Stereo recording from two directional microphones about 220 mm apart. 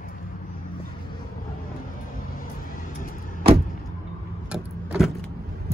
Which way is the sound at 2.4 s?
35° left (ahead or behind).